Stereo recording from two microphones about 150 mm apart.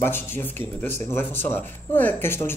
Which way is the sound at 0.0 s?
15° left (ahead or behind).